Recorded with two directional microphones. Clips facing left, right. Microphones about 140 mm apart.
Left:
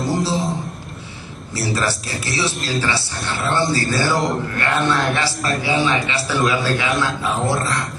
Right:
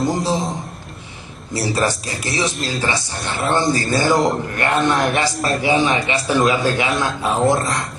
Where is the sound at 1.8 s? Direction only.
15° right (ahead or behind).